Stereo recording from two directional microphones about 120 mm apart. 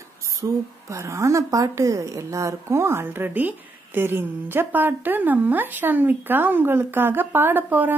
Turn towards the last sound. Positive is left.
turn(degrees=-15)  # may be behind; listen again after turning